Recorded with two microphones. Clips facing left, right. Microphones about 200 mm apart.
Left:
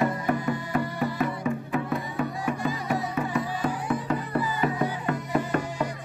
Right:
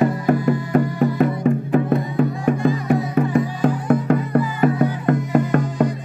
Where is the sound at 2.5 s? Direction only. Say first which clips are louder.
Right 10 dB; 55° right (ahead or behind).